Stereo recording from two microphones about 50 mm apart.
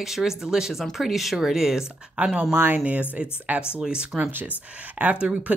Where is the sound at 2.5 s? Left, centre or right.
Right.